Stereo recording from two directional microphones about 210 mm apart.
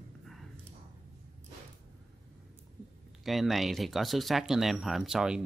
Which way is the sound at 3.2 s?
Centre (ahead or behind).